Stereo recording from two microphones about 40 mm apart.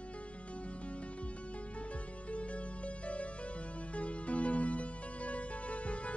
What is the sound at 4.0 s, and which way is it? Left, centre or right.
Music, left.